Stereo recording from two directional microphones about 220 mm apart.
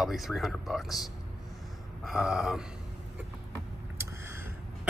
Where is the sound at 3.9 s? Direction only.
10° right (ahead or behind).